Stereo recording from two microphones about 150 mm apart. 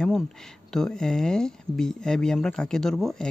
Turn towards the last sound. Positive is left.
turn(degrees=0)  # may be behind; listen again after turning